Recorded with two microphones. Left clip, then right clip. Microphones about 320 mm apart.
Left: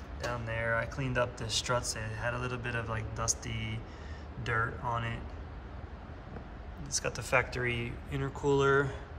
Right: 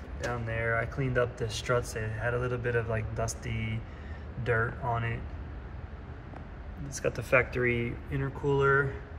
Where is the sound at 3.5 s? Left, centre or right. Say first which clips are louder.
Right 2 dB; left.